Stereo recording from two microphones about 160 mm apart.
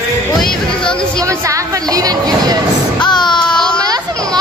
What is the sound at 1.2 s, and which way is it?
A child's voice, 20° right (ahead or behind).